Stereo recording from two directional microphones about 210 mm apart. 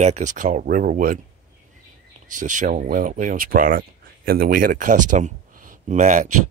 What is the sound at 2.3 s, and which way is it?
Speech, 35° right (ahead or behind).